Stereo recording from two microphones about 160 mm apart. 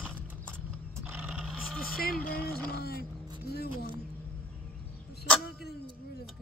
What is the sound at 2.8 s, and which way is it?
Vehicle, 80° left.